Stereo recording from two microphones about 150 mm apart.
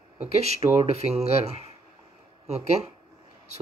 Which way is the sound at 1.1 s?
45° right (ahead or behind).